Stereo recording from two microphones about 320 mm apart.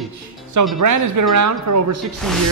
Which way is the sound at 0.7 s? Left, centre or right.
Right.